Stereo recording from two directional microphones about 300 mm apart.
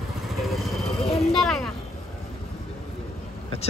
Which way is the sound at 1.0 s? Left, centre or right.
Left.